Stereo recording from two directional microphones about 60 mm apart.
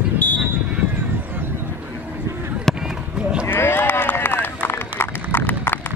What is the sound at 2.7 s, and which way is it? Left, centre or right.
Run, centre.